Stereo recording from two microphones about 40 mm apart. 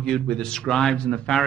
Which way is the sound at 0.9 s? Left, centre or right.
Left.